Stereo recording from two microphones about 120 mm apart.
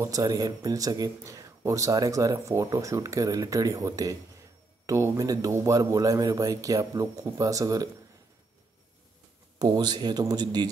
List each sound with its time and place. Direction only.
0.0 s speech: 30° right (ahead or behind)
9.6 s speech: 35° right (ahead or behind)